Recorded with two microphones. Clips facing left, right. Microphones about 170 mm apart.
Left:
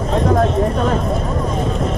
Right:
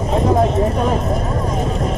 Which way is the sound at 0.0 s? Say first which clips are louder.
Even; 5° right (ahead or behind).